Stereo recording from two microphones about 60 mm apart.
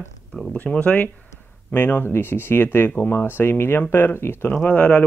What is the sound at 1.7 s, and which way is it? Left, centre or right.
Speech, left.